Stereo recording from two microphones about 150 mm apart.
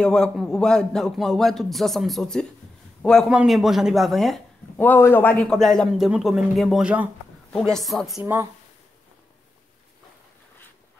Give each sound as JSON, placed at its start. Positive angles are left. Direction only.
{"t": 0.0, "sound": "a man's voice", "side_deg": 5}
{"t": 4.7, "sound": "a man's voice", "side_deg": 15}
{"t": 7.5, "sound": "a man's voice", "side_deg": 5}
{"t": 8.2, "sound": "speech", "side_deg": -15}